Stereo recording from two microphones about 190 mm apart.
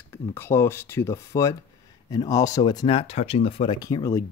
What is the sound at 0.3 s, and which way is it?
Speech, 10° left (ahead or behind).